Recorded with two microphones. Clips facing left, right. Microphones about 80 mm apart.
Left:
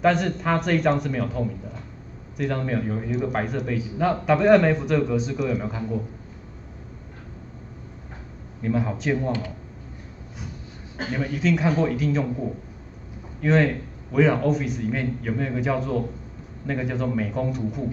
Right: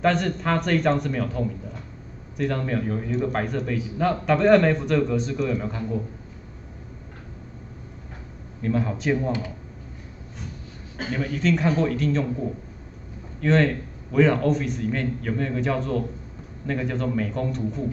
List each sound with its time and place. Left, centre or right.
0.0 s a man's voice: centre
8.6 s a man's voice: centre
11.1 s a man's voice: centre
13.4 s a man's voice: centre